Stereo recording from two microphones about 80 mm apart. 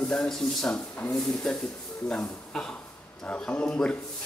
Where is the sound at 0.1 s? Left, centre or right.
Centre.